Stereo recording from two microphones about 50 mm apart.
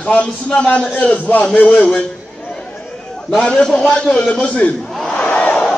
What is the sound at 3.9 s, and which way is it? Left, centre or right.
Speech, centre.